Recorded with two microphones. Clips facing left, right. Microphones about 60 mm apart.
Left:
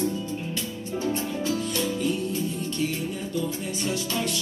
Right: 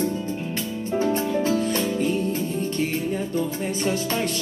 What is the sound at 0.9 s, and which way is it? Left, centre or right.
Music, right.